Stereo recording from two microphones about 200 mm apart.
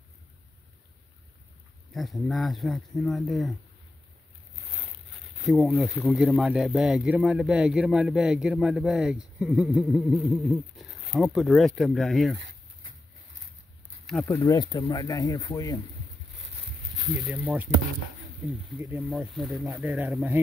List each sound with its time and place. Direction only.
1.9 s speech: centre (ahead or behind)
5.4 s speech: centre (ahead or behind)
14.2 s speech: 15° left (ahead or behind)
17.0 s speech: 5° right (ahead or behind)
18.8 s speech: 10° right (ahead or behind)